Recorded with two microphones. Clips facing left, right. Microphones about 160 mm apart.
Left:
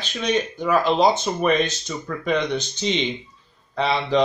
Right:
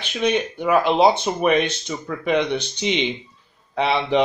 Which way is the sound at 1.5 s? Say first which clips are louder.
Right 2 dB; 60° right (ahead or behind).